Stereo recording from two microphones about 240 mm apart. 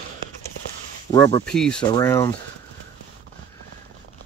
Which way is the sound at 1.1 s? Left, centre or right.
Centre.